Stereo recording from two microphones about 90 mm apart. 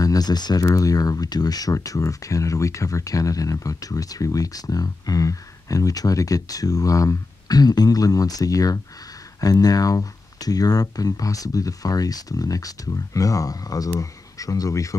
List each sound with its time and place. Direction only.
0.0 s speech: 45° left (ahead or behind)